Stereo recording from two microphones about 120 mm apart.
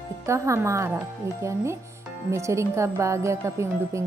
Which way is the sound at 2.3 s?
25° right (ahead or behind).